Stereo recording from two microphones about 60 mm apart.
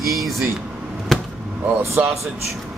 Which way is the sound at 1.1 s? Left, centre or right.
Centre.